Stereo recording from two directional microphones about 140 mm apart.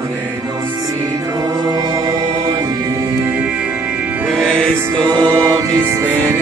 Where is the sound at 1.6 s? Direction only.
30° right (ahead or behind).